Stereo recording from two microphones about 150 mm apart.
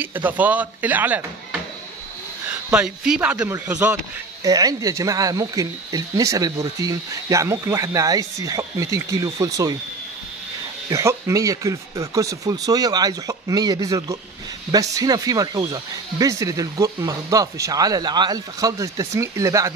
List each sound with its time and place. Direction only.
0.0 s speech: 10° right (ahead or behind)
2.7 s speech: 5° right (ahead or behind)
4.4 s speech: 25° right (ahead or behind)
10.9 s speech: 20° right (ahead or behind)